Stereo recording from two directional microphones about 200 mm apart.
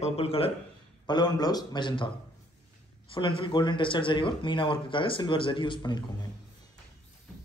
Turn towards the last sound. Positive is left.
turn(degrees=20)  # may be behind; listen again after turning